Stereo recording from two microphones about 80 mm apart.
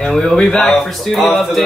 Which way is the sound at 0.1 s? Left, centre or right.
Centre.